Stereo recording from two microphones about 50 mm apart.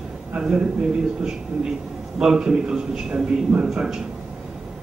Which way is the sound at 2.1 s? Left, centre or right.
Centre.